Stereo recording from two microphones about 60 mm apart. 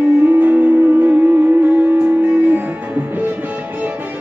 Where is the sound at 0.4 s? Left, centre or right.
Right.